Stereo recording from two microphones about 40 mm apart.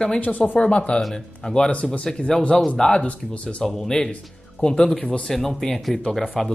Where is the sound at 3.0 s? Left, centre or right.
Left.